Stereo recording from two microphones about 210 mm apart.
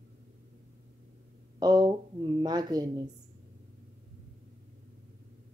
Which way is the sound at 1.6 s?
20° right (ahead or behind).